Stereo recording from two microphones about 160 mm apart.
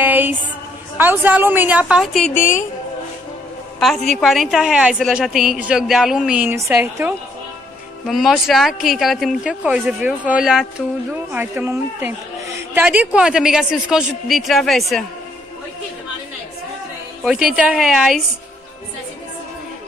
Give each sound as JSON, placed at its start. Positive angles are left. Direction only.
{"t": 0.0, "sound": "music", "side_deg": -10}
{"t": 0.9, "sound": "a woman's voice", "side_deg": -10}
{"t": 2.3, "sound": "a woman's voice", "side_deg": 55}
{"t": 4.1, "sound": "a woman's voice", "side_deg": 0}
{"t": 8.1, "sound": "a woman's voice", "side_deg": 0}
{"t": 11.6, "sound": "a woman's voice", "side_deg": -15}
{"t": 17.2, "sound": "a woman's voice", "side_deg": -5}